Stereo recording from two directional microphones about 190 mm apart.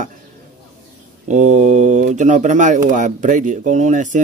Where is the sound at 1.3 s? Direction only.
40° right (ahead or behind).